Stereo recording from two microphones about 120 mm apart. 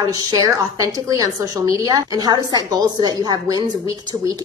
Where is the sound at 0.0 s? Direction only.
30° right (ahead or behind).